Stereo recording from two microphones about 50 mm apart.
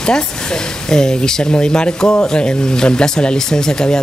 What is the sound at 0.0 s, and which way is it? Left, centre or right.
Speech, centre.